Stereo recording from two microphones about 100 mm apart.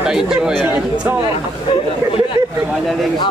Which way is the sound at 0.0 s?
5° right (ahead or behind).